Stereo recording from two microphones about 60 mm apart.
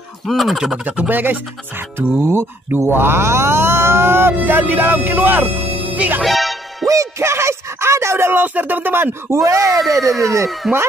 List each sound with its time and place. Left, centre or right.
0.3 s speech: centre
0.8 s speech: right
5.9 s music: right
6.2 s music: centre
6.9 s music: right
9.3 s speech: right
9.9 s speech: centre